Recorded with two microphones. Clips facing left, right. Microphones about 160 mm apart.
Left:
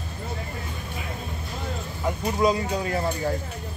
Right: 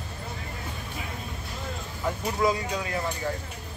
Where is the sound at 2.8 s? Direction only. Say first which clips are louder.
Left 4 dB; 35° left (ahead or behind).